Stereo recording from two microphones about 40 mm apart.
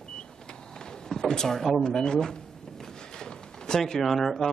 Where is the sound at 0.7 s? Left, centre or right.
Centre.